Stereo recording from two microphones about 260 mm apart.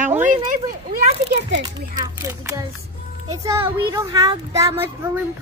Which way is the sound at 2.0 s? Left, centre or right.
Centre.